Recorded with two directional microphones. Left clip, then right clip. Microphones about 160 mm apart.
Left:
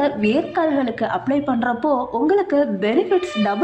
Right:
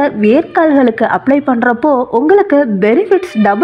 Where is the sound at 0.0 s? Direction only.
35° right (ahead or behind).